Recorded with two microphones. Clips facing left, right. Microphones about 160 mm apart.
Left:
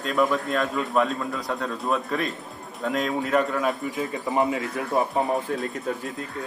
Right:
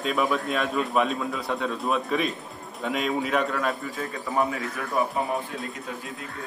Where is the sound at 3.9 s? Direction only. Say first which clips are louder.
Left 2 dB; 20° left (ahead or behind).